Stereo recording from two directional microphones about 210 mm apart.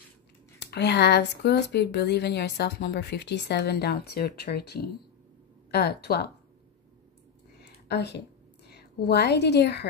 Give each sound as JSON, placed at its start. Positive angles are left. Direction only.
{"t": 0.6, "sound": "speech", "side_deg": 50}
{"t": 7.6, "sound": "a sound", "side_deg": 55}
{"t": 8.6, "sound": "a woman's voice", "side_deg": 50}